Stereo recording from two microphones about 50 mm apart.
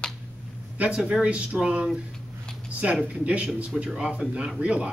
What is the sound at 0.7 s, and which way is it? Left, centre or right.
Speech, right.